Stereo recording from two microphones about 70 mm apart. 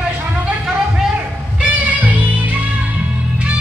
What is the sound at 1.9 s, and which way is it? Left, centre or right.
Music, right.